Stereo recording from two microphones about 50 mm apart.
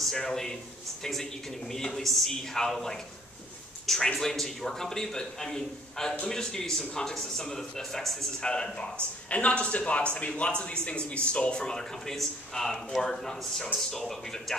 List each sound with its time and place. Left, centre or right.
0.0 s a man's voice: centre
8.4 s a man's voice: centre